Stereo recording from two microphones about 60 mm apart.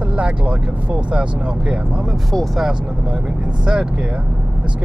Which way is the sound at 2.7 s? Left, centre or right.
Centre.